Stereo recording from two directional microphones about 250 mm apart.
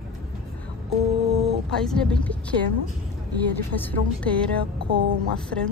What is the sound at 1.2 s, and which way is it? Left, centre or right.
Speech, right.